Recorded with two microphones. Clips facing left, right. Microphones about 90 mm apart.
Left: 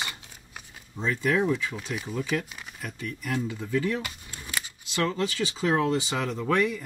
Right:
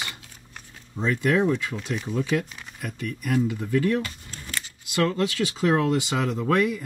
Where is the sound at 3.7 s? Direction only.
5° left (ahead or behind).